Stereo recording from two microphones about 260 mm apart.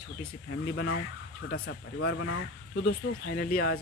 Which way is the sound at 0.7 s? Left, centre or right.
Left.